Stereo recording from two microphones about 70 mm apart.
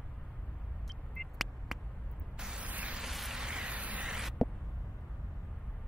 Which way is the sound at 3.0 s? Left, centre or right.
Centre.